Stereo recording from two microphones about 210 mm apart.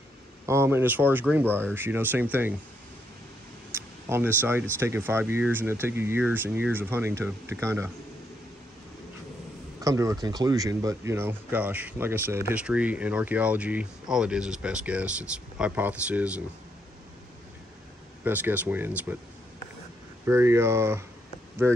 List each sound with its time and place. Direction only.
0.5 s speech: 10° right (ahead or behind)
3.7 s a sound: 10° right (ahead or behind)
4.4 s speech: 10° right (ahead or behind)
9.8 s speech: 15° right (ahead or behind)
18.2 s speech: 10° right (ahead or behind)
20.2 s speech: 15° right (ahead or behind)